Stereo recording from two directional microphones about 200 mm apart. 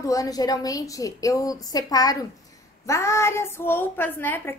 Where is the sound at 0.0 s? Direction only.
15° left (ahead or behind).